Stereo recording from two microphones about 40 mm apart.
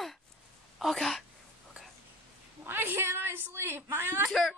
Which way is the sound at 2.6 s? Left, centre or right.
Right.